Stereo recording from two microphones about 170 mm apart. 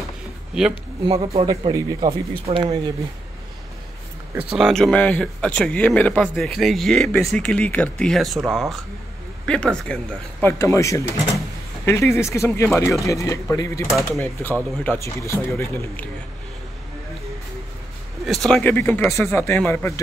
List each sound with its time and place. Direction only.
1.0 s speech: 35° right (ahead or behind)
1.7 s speech: 25° right (ahead or behind)
4.4 s speech: 5° right (ahead or behind)
10.4 s speech: 15° left (ahead or behind)
18.2 s speech: centre (ahead or behind)